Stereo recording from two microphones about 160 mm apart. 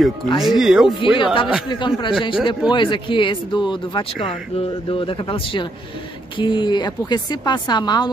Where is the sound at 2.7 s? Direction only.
30° left (ahead or behind).